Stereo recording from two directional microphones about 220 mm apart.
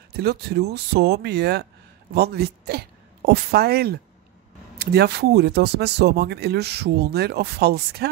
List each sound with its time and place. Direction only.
0.1 s speech: 45° right (ahead or behind)